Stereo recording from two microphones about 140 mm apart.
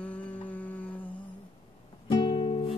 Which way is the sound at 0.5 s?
10° left (ahead or behind).